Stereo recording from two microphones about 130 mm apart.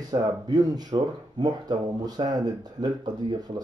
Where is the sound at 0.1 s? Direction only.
30° right (ahead or behind).